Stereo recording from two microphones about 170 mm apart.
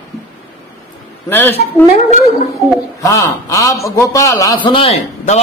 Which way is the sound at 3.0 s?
20° left (ahead or behind).